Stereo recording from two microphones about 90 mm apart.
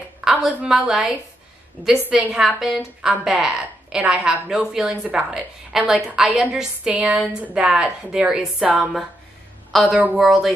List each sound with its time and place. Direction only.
0.2 s a sound: 5° right (ahead or behind)
0.6 s a woman's voice: 5° right (ahead or behind)
9.9 s a woman's voice: 15° right (ahead or behind)
10.2 s speech: 5° right (ahead or behind)